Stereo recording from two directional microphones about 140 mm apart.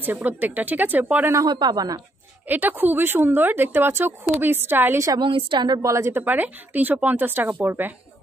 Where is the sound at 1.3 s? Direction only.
30° right (ahead or behind).